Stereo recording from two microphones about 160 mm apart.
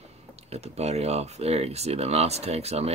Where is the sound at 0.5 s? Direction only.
40° right (ahead or behind).